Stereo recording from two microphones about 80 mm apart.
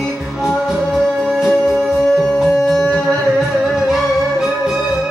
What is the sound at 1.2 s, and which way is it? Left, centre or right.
Music, centre.